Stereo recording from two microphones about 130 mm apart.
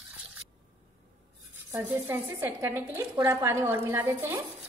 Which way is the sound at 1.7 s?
20° right (ahead or behind).